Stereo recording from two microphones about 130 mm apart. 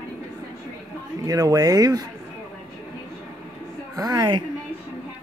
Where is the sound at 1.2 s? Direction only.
30° right (ahead or behind).